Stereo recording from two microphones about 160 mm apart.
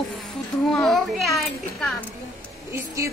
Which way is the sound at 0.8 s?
Centre (ahead or behind).